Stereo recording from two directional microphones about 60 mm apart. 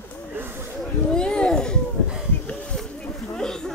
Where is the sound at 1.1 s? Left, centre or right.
Centre.